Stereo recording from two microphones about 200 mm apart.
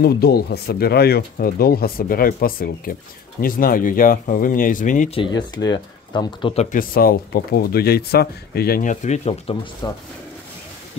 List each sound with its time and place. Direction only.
0.0 s speech: 50° left (ahead or behind)
5.2 s speech: 20° left (ahead or behind)
9.8 s speech: 20° left (ahead or behind)